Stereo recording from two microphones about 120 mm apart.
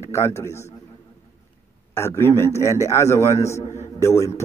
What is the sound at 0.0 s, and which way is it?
Speech, 20° left (ahead or behind).